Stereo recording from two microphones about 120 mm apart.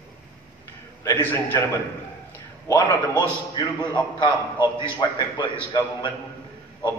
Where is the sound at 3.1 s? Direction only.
40° left (ahead or behind).